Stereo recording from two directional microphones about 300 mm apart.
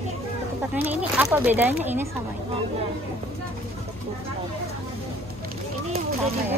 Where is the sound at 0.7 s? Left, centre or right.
Centre.